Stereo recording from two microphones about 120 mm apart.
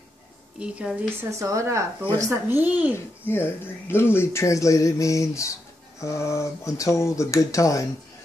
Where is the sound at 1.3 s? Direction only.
25° right (ahead or behind).